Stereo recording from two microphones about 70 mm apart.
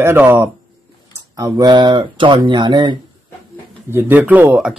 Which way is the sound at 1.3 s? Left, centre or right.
Right.